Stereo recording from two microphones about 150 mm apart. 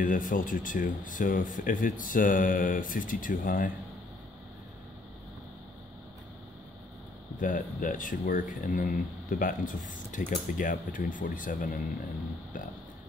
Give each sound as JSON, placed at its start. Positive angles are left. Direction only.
{"t": 0.0, "sound": "speech", "side_deg": 65}
{"t": 7.3, "sound": "speech", "side_deg": 65}